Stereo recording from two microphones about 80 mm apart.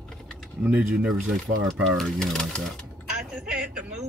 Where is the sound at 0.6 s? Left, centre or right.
Centre.